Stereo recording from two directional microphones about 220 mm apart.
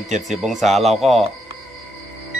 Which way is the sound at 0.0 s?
Centre (ahead or behind).